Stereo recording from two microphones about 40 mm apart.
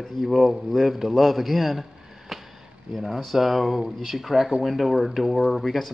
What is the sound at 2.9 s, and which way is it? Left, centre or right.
Speech, centre.